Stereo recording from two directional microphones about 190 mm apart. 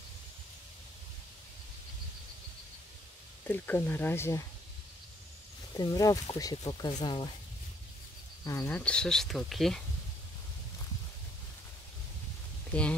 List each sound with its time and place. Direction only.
3.4 s speech: 10° left (ahead or behind)
5.8 s speech: 20° left (ahead or behind)
8.5 s speech: 10° left (ahead or behind)